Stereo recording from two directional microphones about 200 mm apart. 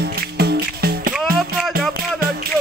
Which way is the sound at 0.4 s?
50° right (ahead or behind).